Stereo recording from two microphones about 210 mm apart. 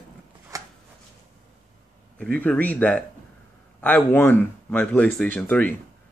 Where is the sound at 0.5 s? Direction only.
15° right (ahead or behind).